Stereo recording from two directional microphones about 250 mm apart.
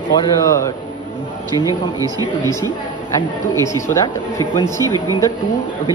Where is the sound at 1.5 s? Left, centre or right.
Centre.